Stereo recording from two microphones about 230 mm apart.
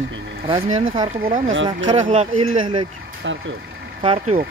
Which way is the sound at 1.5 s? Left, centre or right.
Right.